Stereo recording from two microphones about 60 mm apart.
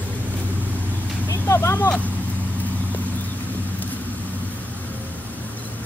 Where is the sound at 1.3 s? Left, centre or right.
Left.